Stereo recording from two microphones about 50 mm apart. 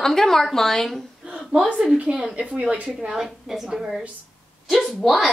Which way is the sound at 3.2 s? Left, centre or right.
Centre.